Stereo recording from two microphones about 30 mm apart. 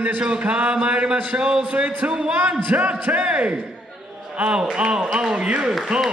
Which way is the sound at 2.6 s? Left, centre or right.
Right.